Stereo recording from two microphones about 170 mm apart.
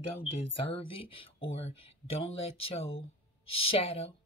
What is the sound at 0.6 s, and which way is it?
Speech, 35° left (ahead or behind).